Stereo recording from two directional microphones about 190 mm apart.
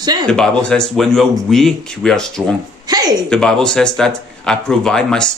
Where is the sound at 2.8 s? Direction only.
20° right (ahead or behind).